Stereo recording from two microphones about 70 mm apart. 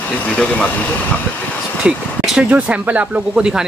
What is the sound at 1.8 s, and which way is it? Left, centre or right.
Speech, centre.